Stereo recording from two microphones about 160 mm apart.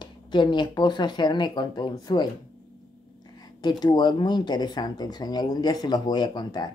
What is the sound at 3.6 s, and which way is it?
Speech, 25° left (ahead or behind).